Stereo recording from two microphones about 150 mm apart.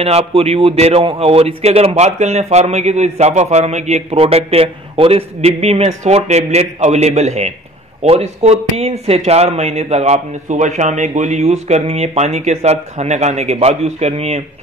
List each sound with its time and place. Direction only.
0.0 s a man's voice: 40° right (ahead or behind)